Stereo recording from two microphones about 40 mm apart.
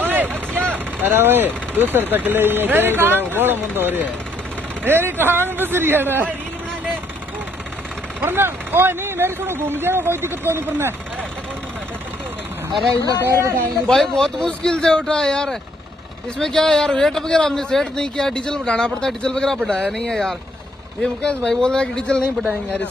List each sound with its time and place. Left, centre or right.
0.0 s vehicle: right
0.9 s speech: right
8.2 s speech: right
13.2 s speech: right
13.8 s speech: centre
21.0 s speech: left